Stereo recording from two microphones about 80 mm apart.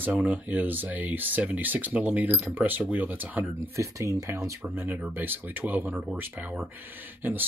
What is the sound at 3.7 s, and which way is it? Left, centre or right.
Speech, right.